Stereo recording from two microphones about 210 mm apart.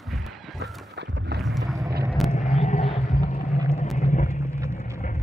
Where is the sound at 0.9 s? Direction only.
55° right (ahead or behind).